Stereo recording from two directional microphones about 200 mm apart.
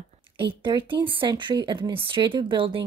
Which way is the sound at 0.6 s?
25° right (ahead or behind).